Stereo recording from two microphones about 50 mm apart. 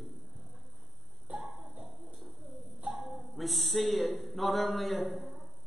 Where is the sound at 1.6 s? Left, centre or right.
Right.